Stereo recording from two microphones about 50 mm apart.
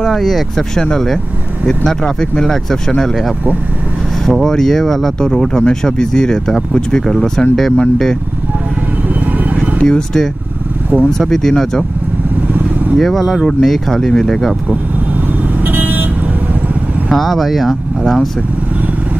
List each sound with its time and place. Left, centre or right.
0.0 s speech: centre
4.3 s speech: centre
9.6 s speech: centre
12.9 s speech: centre
15.6 s vehicle: right
17.1 s speech: centre